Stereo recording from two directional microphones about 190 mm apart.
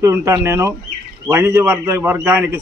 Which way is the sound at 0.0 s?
15° right (ahead or behind).